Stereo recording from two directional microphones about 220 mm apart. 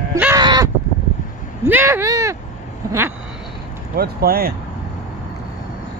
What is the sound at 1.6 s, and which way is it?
Speech, 10° right (ahead or behind).